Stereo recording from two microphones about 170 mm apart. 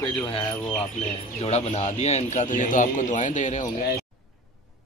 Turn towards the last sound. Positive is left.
turn(degrees=45)  # may be behind; listen again after turning